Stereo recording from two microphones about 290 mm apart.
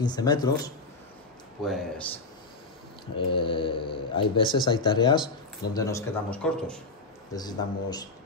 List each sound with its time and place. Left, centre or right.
0.0 s speech: centre
1.6 s a man's voice: centre
3.3 s speech: centre
7.3 s speech: centre